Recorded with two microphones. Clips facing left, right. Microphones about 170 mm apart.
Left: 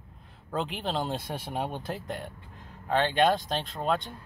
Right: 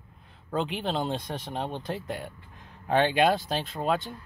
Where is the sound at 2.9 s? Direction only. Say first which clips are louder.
Right 3 dB; 15° right (ahead or behind).